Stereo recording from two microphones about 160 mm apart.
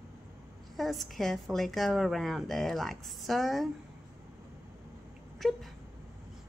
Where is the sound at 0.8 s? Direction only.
Centre (ahead or behind).